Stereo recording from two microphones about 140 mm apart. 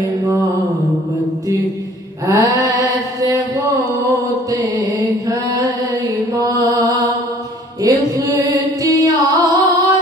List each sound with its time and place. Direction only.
2.2 s mantra: 25° right (ahead or behind)
6.3 s mantra: 25° right (ahead or behind)
7.8 s music: 25° right (ahead or behind)